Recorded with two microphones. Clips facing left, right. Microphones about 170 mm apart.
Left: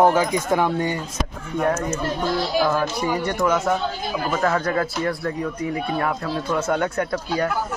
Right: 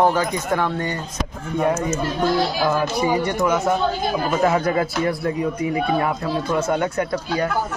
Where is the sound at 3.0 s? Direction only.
Centre (ahead or behind).